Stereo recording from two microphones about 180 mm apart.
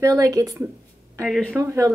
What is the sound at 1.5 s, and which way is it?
Speech, 15° right (ahead or behind).